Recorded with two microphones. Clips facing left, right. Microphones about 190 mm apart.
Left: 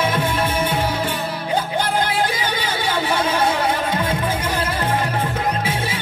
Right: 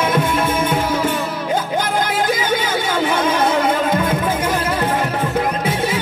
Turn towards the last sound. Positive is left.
turn(degrees=-40)  # may be behind; listen again after turning